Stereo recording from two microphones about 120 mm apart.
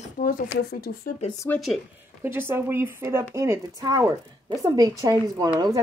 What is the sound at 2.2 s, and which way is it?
Speech, 20° right (ahead or behind).